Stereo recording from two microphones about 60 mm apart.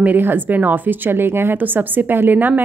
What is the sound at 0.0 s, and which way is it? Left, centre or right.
Speech, right.